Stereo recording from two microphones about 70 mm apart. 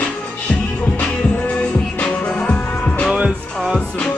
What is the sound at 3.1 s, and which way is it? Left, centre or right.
Music, centre.